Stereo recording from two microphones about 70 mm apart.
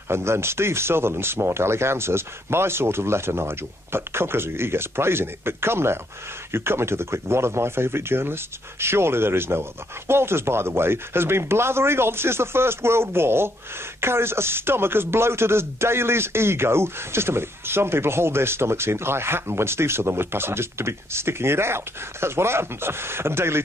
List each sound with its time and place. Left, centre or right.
0.1 s speech: right